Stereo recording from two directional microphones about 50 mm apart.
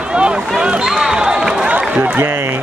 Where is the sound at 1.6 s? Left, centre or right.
Right.